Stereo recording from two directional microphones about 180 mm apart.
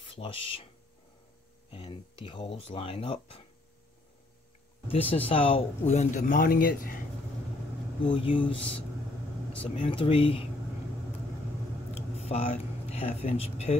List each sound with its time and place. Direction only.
0.0 s speech: 30° left (ahead or behind)
1.7 s speech: 30° left (ahead or behind)
4.8 s speech: 30° left (ahead or behind); by 7.0 s 50° left (ahead or behind)
8.1 s speech: 30° left (ahead or behind)
11.9 s speech: 35° left (ahead or behind)